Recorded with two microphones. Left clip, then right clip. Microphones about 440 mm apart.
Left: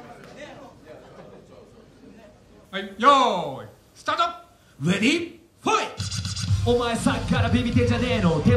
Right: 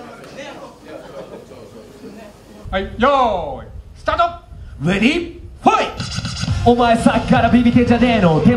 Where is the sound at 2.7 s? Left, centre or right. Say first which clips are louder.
Right 2 dB; right.